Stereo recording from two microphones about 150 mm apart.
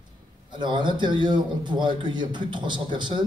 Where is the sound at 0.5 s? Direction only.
30° right (ahead or behind).